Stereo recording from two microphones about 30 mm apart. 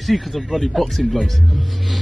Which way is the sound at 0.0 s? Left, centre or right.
Centre.